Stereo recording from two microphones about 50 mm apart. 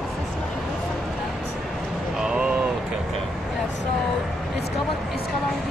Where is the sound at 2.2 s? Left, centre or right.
Centre.